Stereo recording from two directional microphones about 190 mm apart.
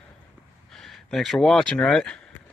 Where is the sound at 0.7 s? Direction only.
Centre (ahead or behind).